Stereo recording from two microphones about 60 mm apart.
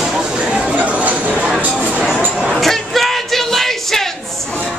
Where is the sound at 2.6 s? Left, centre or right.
Centre.